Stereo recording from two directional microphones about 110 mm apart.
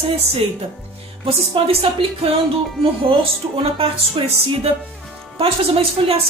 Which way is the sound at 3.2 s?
60° right (ahead or behind).